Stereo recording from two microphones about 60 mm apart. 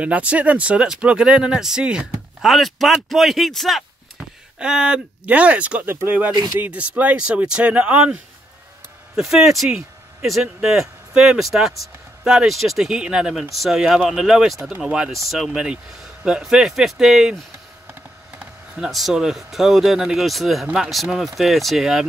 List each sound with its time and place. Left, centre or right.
0.0 s speech: right
2.4 s speech: centre
4.6 s speech: centre
9.1 s speech: centre
15.2 s speech: centre
15.5 s speech: centre
18.9 s speech: centre
20.6 s speech: centre
21.4 s speech: centre